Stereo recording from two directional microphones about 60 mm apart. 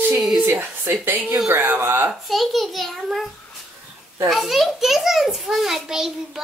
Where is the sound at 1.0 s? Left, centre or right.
Right.